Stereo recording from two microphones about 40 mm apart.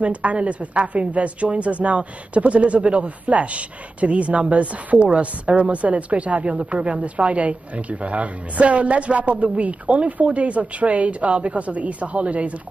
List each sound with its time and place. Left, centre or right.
0.0 s a woman's voice: right